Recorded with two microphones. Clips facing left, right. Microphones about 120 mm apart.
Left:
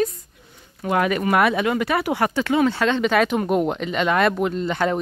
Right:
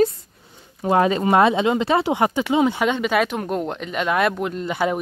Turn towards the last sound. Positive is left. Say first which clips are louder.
# left 1 dB
turn(degrees=-10)  # may be behind; listen again after turning